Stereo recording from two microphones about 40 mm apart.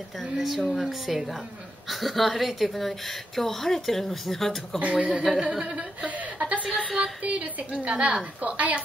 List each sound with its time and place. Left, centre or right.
0.2 s speech: centre
4.7 s speech: right
5.1 s speech: centre
5.4 s speech: right
5.8 s speech: right
7.2 s a woman's voice: right
8.4 s speech: right